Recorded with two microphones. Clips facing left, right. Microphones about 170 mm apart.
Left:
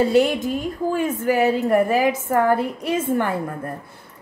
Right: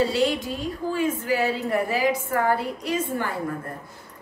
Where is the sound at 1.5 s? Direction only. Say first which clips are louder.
Left 7 dB; 50° left (ahead or behind).